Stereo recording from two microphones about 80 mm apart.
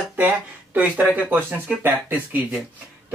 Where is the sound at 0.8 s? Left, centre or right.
Right.